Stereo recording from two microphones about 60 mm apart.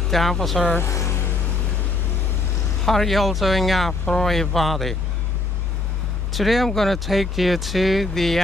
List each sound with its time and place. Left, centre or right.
0.1 s speech: centre
0.8 s vehicle: left
2.8 s speech: centre
6.3 s speech: centre